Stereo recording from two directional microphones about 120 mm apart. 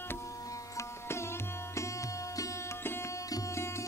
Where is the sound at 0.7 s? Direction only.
20° left (ahead or behind).